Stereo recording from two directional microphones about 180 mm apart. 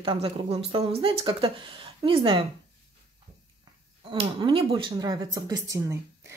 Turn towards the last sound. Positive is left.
turn(degrees=-20)  # may be behind; listen again after turning